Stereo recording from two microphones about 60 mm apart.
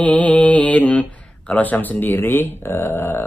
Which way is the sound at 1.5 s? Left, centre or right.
Left.